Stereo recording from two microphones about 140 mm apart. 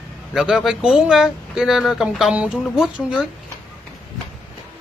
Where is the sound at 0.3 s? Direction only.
5° right (ahead or behind).